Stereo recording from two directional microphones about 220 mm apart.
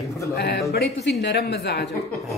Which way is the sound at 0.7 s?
50° left (ahead or behind).